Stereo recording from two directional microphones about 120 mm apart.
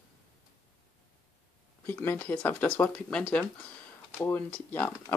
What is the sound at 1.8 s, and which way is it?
Speech, 20° left (ahead or behind).